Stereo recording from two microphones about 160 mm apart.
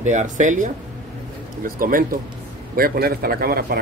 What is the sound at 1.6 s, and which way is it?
A man's voice, 60° right (ahead or behind).